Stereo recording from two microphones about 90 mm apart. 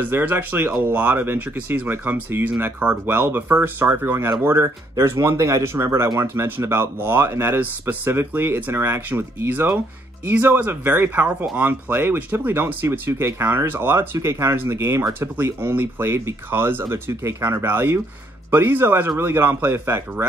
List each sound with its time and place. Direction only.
0.0 s speech: 20° right (ahead or behind)